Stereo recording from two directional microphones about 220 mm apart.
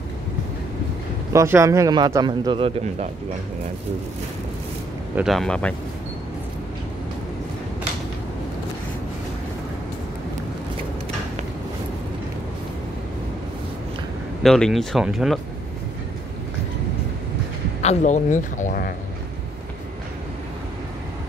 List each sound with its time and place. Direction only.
1.3 s a man's voice: 15° right (ahead or behind)
5.1 s speech: centre (ahead or behind)
14.4 s speech: centre (ahead or behind)
17.8 s speech: 35° left (ahead or behind)